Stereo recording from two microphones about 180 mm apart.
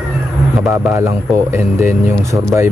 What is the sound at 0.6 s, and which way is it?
Speech, 10° right (ahead or behind).